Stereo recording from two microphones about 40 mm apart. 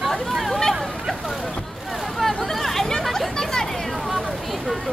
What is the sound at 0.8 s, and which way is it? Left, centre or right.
Vehicle, centre.